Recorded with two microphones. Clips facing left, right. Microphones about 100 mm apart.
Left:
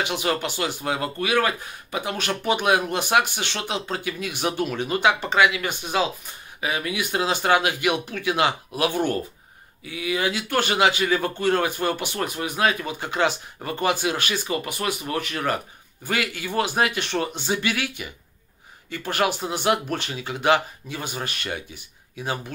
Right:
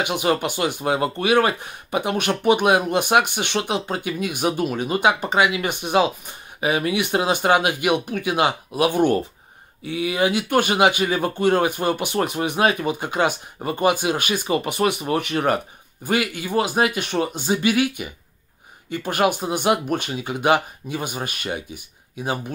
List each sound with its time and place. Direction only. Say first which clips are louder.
0.2 s speech: right 4 dB; 15° right (ahead or behind)
9.8 s speech: right 5 dB; 30° right (ahead or behind)
10.5 s speech: right 1 dB; 15° right (ahead or behind)